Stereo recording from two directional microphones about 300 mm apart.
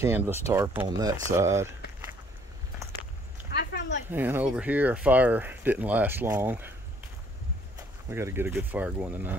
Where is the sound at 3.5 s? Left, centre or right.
Left.